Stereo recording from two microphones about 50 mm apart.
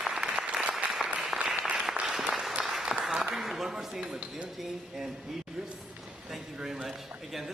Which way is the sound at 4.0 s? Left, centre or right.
Centre.